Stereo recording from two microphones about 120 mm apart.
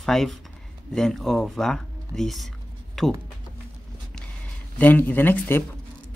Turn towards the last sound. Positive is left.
turn(degrees=15)  # may be behind; listen again after turning